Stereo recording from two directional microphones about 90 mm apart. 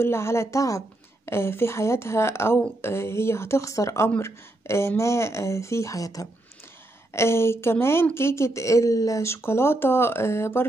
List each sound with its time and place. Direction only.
0.0 s a woman's voice: 30° left (ahead or behind)
7.1 s a woman's voice: 30° left (ahead or behind)